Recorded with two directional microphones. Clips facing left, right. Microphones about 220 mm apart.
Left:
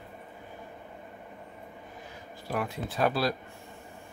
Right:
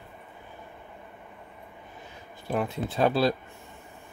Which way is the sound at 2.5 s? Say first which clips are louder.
Right 4 dB; 25° right (ahead or behind).